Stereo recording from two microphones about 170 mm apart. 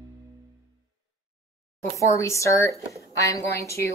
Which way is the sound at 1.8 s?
15° left (ahead or behind).